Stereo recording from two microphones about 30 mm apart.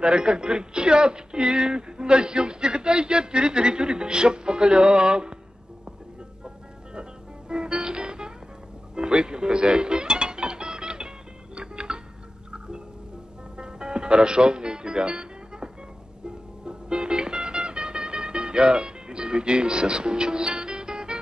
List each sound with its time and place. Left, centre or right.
0.0 s speech: right
6.4 s music: right
13.6 s music: right